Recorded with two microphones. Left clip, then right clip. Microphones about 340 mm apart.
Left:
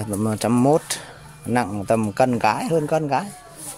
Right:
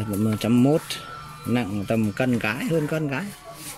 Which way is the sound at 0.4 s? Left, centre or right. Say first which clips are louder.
Left 3 dB; left.